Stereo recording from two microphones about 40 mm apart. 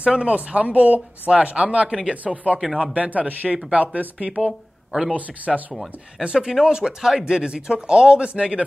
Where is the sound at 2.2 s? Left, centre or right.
Right.